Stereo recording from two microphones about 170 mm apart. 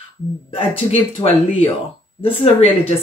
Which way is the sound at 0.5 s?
30° left (ahead or behind).